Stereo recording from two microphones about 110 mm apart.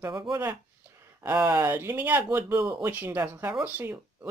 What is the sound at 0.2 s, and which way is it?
Speech, 25° right (ahead or behind).